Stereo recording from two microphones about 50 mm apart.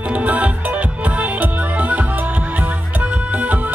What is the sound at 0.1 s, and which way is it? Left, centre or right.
Music, right.